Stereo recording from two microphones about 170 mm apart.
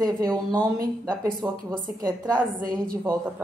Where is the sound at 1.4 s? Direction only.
5° right (ahead or behind).